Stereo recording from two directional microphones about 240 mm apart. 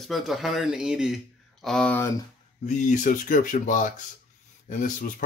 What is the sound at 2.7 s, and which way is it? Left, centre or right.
Speech, left.